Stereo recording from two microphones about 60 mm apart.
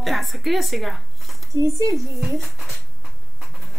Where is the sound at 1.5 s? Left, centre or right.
Right.